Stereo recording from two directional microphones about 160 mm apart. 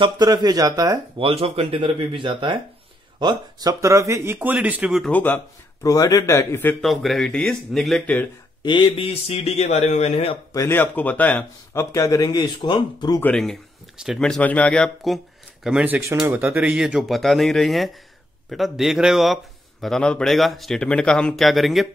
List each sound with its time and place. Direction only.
0.0 s speech: 25° right (ahead or behind)
1.1 s speech: 35° right (ahead or behind); by 5.1 s 5° right (ahead or behind)
5.1 s a man's voice: 10° left (ahead or behind)
6.8 s a man's voice: centre (ahead or behind)
8.6 s speech: 30° left (ahead or behind)
10.5 s speech: 15° left (ahead or behind)
13.2 s a man's voice: 5° left (ahead or behind)
15.6 s a man's voice: 10° right (ahead or behind)